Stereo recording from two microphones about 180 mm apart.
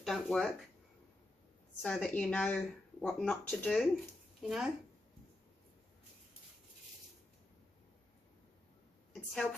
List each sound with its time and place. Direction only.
0.0 s speech: centre (ahead or behind)
1.8 s speech: 5° left (ahead or behind)
9.3 s speech: 5° left (ahead or behind)